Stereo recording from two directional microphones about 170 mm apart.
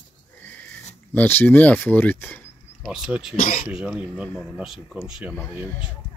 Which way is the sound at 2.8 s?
5° right (ahead or behind).